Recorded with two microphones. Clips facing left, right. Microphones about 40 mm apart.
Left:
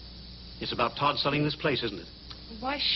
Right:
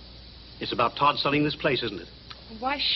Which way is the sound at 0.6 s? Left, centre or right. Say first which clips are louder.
Right 4 dB; centre.